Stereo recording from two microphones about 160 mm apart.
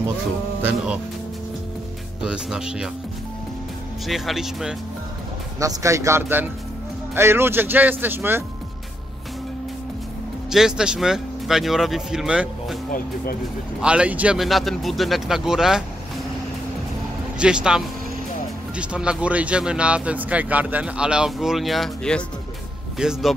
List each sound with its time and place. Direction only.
0.6 s speech: 10° right (ahead or behind)
2.2 s speech: 5° right (ahead or behind)
4.1 s speech: centre (ahead or behind)
5.6 s speech: 20° right (ahead or behind)
10.5 s speech: 5° right (ahead or behind)
13.7 s speech: 5° right (ahead or behind)
17.4 s speech: 5° right (ahead or behind)